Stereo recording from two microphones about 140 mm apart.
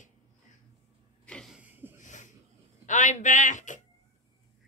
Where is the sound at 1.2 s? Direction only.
5° left (ahead or behind).